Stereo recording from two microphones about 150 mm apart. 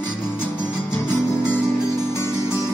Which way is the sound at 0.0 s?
15° left (ahead or behind).